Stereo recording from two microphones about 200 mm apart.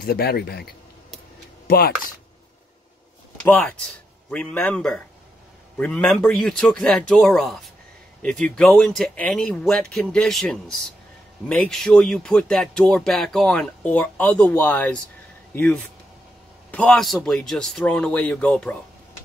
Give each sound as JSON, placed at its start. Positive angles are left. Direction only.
{"t": 0.0, "sound": "speech", "side_deg": 50}
{"t": 3.4, "sound": "speech", "side_deg": 10}